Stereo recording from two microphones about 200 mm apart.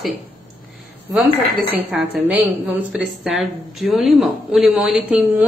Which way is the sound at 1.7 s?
10° right (ahead or behind).